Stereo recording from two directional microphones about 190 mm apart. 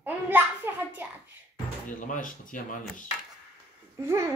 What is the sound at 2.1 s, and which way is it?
Speech, 45° left (ahead or behind).